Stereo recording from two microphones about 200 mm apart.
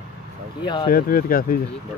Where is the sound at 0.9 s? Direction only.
45° left (ahead or behind).